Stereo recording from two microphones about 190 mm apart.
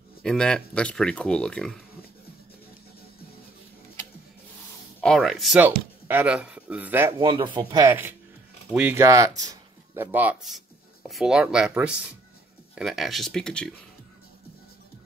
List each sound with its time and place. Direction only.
0.2 s speech: 5° left (ahead or behind)
5.0 s speech: centre (ahead or behind)
7.2 s speech: 25° right (ahead or behind)
7.8 s speech: 10° right (ahead or behind); by 13.7 s 5° left (ahead or behind)